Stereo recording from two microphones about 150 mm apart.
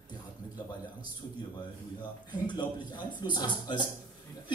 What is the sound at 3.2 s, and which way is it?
Speech, 30° left (ahead or behind).